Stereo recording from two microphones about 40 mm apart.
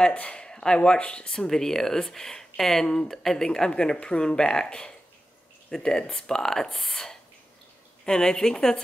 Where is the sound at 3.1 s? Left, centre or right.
Centre.